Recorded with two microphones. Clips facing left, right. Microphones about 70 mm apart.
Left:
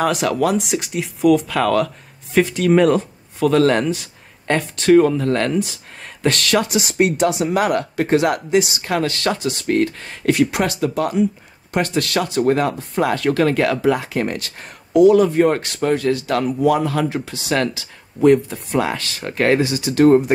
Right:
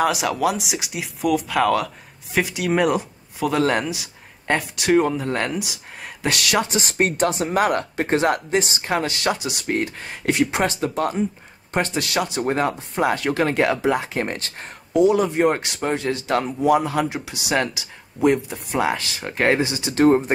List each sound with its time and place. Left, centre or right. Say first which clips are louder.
0.0 s speech: left 2 dB; centre
6.9 s speech: left 5 dB; right
8.8 s speech: left 2 dB; centre
11.7 s speech: left 3 dB; right